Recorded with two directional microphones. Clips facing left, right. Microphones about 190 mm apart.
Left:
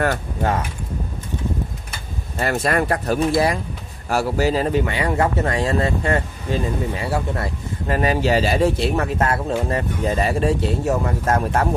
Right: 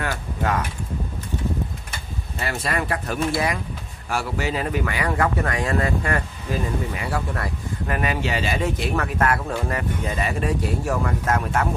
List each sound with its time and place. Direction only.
2.3 s speech: 45° left (ahead or behind)